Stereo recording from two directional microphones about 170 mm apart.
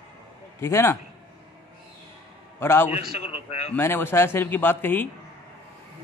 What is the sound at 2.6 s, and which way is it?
Speech, 15° left (ahead or behind).